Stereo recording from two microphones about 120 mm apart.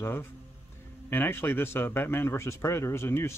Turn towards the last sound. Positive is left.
turn(degrees=20)  # may be behind; listen again after turning